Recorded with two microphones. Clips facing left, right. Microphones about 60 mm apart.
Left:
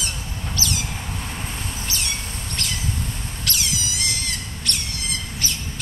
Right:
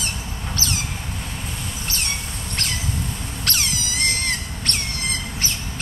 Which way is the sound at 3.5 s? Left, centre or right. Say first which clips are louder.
Right 1 dB; right.